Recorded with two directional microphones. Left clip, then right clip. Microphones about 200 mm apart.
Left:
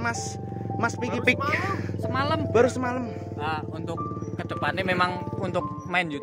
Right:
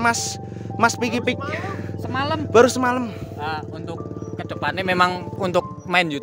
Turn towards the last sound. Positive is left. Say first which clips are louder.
# right 6 dB
turn(degrees=-55)  # may be behind; listen again after turning